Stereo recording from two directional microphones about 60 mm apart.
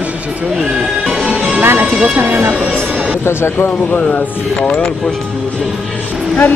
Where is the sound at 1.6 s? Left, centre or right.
Right.